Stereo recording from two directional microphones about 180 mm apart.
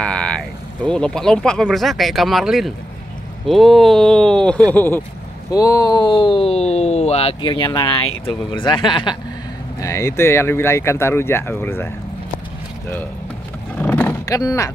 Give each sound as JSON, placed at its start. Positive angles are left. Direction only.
{"t": 0.0, "sound": "speech", "side_deg": 5}
{"t": 9.8, "sound": "speech", "side_deg": 15}
{"t": 13.7, "sound": "roar", "side_deg": 10}